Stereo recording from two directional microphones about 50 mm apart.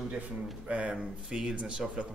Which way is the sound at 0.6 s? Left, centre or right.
Right.